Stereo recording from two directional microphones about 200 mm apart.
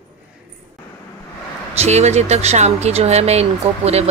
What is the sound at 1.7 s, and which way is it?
Speech, 35° right (ahead or behind).